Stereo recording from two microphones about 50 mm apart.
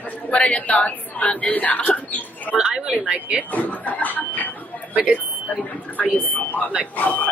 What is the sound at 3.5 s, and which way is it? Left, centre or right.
Speech, left.